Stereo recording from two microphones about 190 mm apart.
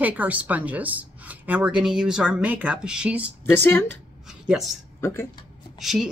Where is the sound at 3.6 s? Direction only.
10° left (ahead or behind).